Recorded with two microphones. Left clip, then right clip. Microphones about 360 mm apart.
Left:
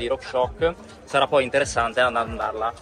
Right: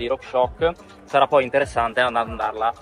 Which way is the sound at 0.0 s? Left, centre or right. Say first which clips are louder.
Right 2 dB; centre.